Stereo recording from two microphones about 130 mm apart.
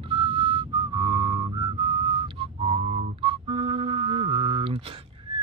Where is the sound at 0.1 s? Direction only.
45° right (ahead or behind).